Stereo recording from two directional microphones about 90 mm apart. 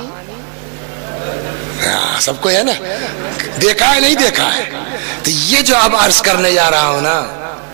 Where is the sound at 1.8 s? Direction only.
15° right (ahead or behind).